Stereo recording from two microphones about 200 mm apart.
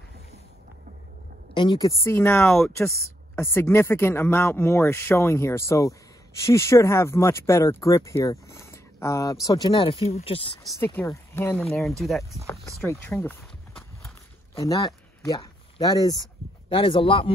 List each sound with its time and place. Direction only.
1.5 s a woman's voice: 25° left (ahead or behind)
2.0 s speech: 10° left (ahead or behind)
10.8 s speech: 10° left (ahead or behind)
11.6 s speech: centre (ahead or behind)
12.4 s walk: 15° left (ahead or behind)
14.6 s speech: 15° left (ahead or behind)